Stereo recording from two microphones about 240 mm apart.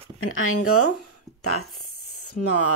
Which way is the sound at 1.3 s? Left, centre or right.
Centre.